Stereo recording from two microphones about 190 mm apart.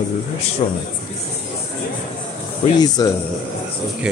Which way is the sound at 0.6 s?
40° left (ahead or behind).